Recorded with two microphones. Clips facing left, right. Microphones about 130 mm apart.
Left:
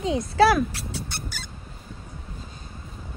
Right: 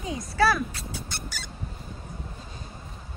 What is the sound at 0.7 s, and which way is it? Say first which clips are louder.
Speech: left 3 dB; 70° left (ahead or behind).